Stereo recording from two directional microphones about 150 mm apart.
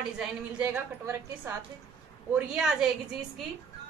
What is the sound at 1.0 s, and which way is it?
Speech, 20° right (ahead or behind).